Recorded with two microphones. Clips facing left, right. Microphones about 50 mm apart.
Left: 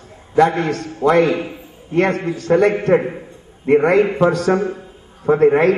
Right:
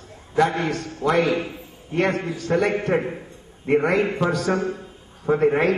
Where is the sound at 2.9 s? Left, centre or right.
Centre.